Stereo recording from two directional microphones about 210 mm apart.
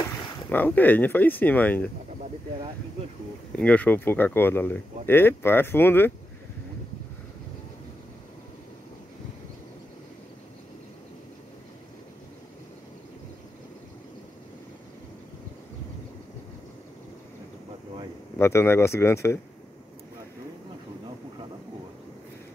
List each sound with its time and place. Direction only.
0.5 s speech: 10° left (ahead or behind)
3.5 s speech: 5° left (ahead or behind)
18.4 s speech: 10° left (ahead or behind)